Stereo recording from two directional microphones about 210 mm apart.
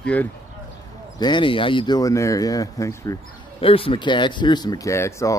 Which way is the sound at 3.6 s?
25° left (ahead or behind).